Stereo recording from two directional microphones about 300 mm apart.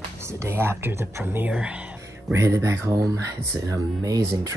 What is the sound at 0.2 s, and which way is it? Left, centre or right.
Speech, centre.